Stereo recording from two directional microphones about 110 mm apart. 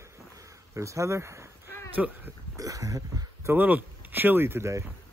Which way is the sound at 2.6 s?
30° right (ahead or behind).